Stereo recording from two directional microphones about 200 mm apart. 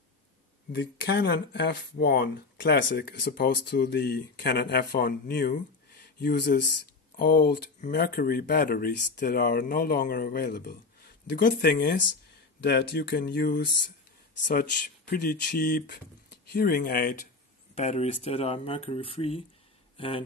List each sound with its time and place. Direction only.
0.7 s speech: 55° left (ahead or behind)
17.7 s speech: 35° left (ahead or behind)